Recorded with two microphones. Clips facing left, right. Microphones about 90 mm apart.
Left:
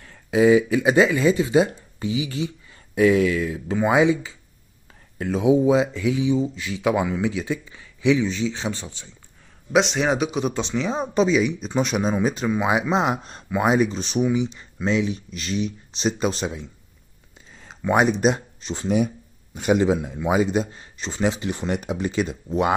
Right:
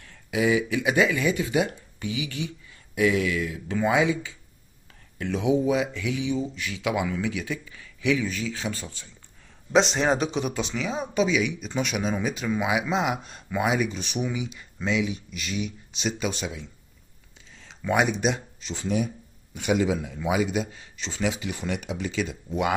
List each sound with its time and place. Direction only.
0.0 s speech: 35° left (ahead or behind)
9.7 s a man's voice: 5° left (ahead or behind)
10.3 s speech: 20° left (ahead or behind)
10.9 s speech: 35° left (ahead or behind)
17.6 s a sound: 45° left (ahead or behind)
18.2 s speech: 40° left (ahead or behind)